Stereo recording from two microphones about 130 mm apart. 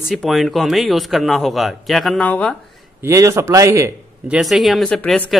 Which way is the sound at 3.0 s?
20° right (ahead or behind).